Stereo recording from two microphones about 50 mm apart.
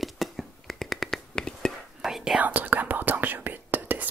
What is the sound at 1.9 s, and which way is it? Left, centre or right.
Whispering, centre.